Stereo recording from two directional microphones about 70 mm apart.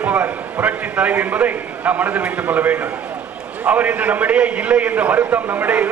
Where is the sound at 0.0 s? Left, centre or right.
Right.